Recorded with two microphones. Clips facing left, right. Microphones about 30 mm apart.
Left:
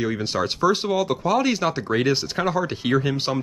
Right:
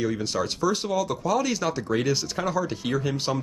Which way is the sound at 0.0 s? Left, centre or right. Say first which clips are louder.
Left 2 dB; left.